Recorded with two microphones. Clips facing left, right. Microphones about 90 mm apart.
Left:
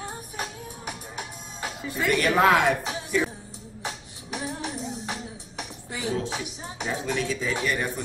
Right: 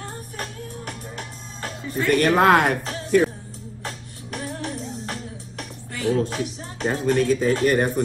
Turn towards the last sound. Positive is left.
turn(degrees=-50)  # may be behind; listen again after turning